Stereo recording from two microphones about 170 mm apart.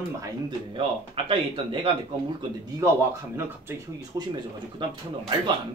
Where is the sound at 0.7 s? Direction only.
30° right (ahead or behind).